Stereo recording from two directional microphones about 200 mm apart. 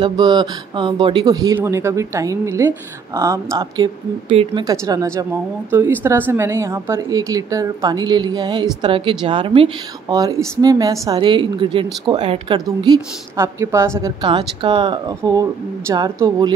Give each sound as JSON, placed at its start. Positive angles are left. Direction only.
{"t": 0.0, "sound": "speech", "side_deg": -20}